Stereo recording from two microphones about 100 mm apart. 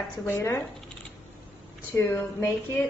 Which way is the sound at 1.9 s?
30° left (ahead or behind).